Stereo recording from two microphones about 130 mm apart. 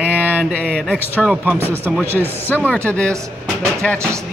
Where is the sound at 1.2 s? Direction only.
10° right (ahead or behind).